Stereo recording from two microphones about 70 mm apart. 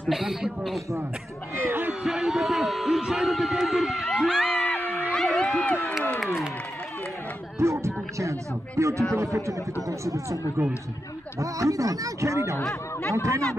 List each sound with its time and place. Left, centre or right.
0.1 s a man's voice: centre
1.6 s a sound: right
2.0 s a man's voice: centre
5.1 s a sound: centre
5.6 s speech: centre
6.1 s a man's voice: centre
7.5 s speech: right